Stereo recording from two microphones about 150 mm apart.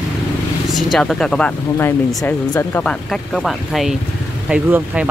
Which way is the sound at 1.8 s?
15° left (ahead or behind).